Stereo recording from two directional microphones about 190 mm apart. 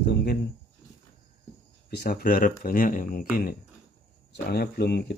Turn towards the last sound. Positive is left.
turn(degrees=60)  # may be behind; listen again after turning